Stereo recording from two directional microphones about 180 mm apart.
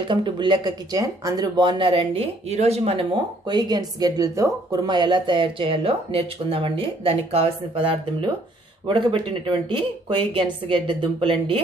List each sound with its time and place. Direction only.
0.1 s speech: 25° right (ahead or behind)